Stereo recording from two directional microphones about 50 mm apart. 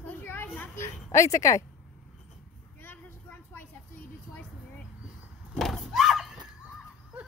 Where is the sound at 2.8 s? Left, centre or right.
Left.